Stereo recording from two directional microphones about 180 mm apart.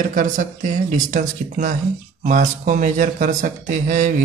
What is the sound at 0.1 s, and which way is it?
A man's voice, 45° right (ahead or behind).